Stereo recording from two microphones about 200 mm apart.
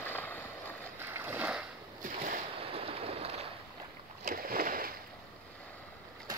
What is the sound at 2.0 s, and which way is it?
Boat, 40° right (ahead or behind).